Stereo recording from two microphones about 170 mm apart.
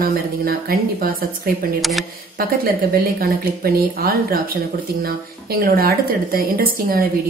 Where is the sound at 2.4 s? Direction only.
60° right (ahead or behind).